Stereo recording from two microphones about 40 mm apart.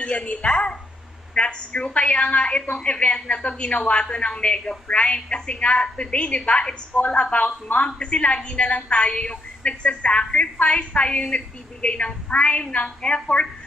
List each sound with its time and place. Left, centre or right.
0.0 s a woman's voice: left